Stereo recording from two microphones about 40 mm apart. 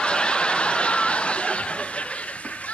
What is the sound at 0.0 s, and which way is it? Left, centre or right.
Snicker, left.